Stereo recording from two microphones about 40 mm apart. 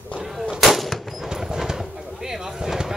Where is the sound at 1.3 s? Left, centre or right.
Centre.